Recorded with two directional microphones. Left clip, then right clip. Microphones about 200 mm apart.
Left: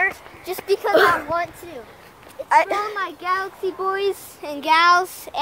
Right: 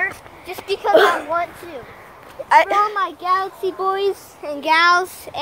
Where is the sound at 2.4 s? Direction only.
15° right (ahead or behind).